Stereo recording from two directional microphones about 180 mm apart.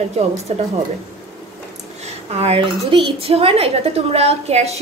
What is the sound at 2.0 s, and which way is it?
A woman's voice, 35° right (ahead or behind).